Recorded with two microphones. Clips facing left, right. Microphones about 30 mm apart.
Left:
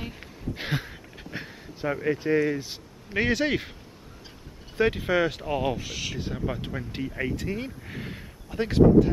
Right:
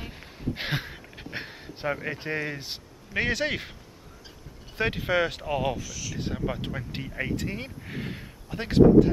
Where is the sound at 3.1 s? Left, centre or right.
Centre.